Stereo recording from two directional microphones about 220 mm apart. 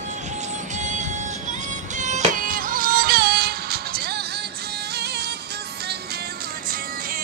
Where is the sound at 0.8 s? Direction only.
35° right (ahead or behind).